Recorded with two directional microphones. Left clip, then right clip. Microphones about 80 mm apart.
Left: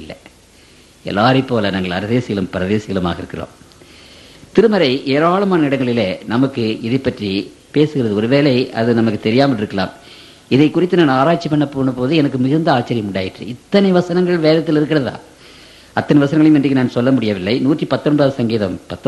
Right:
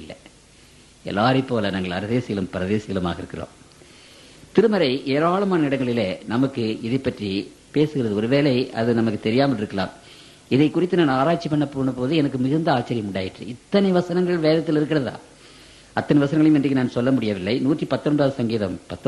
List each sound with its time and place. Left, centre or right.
1.0 s speech: right
4.6 s speech: right